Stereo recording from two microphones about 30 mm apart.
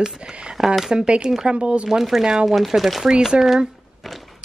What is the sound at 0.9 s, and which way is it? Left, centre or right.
Speech, right.